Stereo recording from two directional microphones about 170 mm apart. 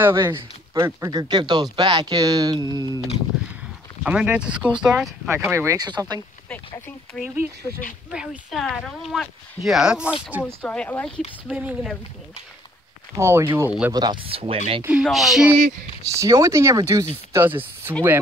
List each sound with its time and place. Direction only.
0.3 s speech: 15° right (ahead or behind)
4.0 s speech: 5° right (ahead or behind)
5.3 s speech: 15° right (ahead or behind)
7.2 s speech: 10° right (ahead or behind)
10.4 s speech: 5° left (ahead or behind)
11.4 s speech: 5° right (ahead or behind)
13.1 s speech: 15° right (ahead or behind)
13.9 s speech: 25° right (ahead or behind)
14.8 s speech: 10° right (ahead or behind)
16.0 s speech: 20° right (ahead or behind)